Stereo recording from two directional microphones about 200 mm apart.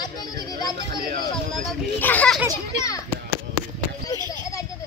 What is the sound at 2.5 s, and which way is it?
Speech, 15° left (ahead or behind).